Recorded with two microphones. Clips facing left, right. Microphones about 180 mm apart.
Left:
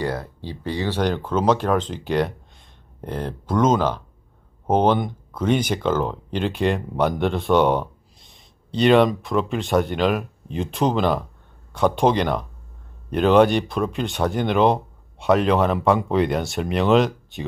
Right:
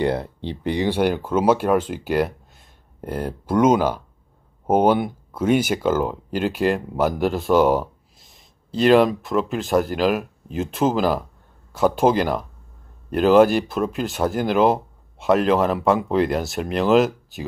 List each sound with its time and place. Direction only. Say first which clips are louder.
0.0 s speech: right 4 dB; 20° right (ahead or behind); by 17.5 s centre (ahead or behind)